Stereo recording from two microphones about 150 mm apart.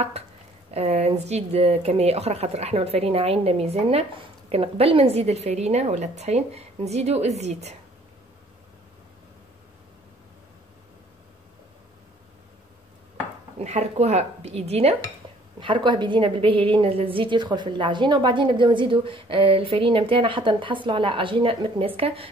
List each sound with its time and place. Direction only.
0.7 s speech: 45° right (ahead or behind)
13.6 s speech: 45° right (ahead or behind)
15.6 s a woman's voice: 30° right (ahead or behind)